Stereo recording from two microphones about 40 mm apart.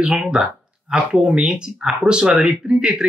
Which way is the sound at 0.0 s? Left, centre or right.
Right.